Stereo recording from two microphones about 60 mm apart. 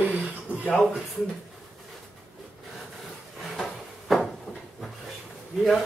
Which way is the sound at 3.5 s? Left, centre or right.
Centre.